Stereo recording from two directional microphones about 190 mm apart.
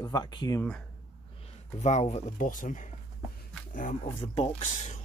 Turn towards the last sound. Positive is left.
turn(degrees=30)  # may be behind; listen again after turning